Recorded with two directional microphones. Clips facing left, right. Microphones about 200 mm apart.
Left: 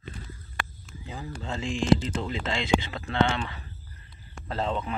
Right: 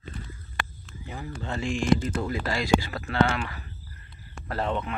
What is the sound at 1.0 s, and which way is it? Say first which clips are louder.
Speech: right 1 dB; 25° left (ahead or behind).